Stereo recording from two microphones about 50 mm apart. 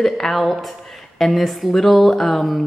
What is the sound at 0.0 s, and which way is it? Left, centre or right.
Speech, centre.